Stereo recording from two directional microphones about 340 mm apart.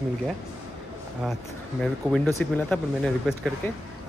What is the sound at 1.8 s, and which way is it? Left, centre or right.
Speech, centre.